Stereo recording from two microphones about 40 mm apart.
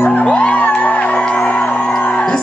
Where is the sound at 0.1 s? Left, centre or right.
Left.